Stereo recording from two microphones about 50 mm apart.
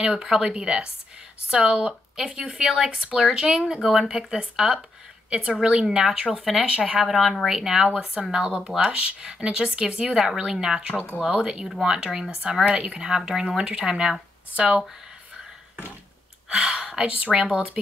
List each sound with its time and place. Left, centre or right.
0.0 s speech: centre
11.0 s speech: left
11.2 s speech: centre
16.4 s speech: centre